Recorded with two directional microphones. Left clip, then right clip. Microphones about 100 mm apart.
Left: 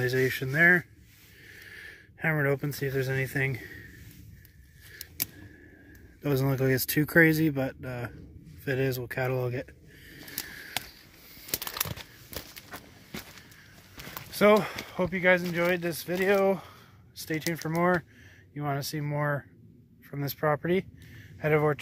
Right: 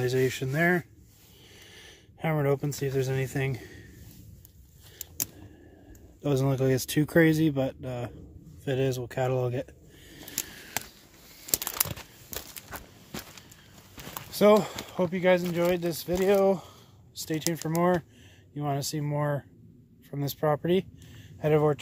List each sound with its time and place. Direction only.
0.0 s speech: 25° right (ahead or behind)
6.2 s speech: 15° right (ahead or behind)
8.6 s a sound: 20° right (ahead or behind)
11.5 s a sound: 10° right (ahead or behind)
12.6 s walk: 5° right (ahead or behind)
14.3 s speech: 25° right (ahead or behind)
17.6 s speech: 25° right (ahead or behind)